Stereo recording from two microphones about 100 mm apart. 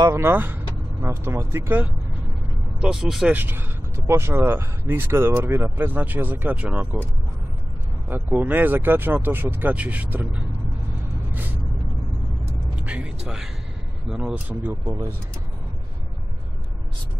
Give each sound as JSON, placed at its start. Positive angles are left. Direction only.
{"t": 0.1, "sound": "speech", "side_deg": -25}
{"t": 2.8, "sound": "speech", "side_deg": -5}
{"t": 3.3, "sound": "speech", "side_deg": -20}
{"t": 8.1, "sound": "speech", "side_deg": -20}
{"t": 11.3, "sound": "vehicle", "side_deg": -20}
{"t": 12.8, "sound": "speech", "side_deg": -10}